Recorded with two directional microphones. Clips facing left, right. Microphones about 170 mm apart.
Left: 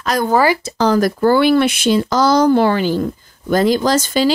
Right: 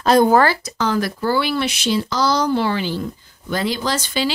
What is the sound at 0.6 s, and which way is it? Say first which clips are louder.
Speech: left 6 dB; 30° left (ahead or behind).